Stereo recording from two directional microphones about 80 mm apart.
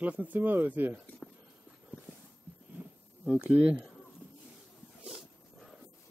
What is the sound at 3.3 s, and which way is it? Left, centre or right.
Speech, centre.